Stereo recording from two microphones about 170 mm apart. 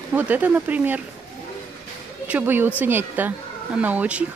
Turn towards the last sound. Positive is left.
turn(degrees=-10)  # may be behind; listen again after turning